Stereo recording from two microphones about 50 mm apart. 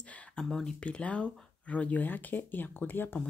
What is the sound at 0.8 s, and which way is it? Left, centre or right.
Speech, left.